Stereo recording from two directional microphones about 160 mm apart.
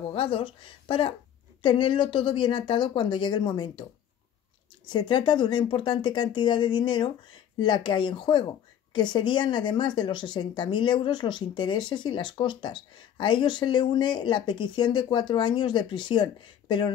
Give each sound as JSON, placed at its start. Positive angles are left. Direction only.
{"t": 0.0, "sound": "speech", "side_deg": 35}
{"t": 4.8, "sound": "speech", "side_deg": 30}